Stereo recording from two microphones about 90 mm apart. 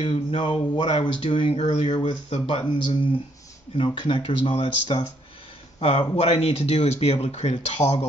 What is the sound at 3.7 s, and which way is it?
Speech, 80° left.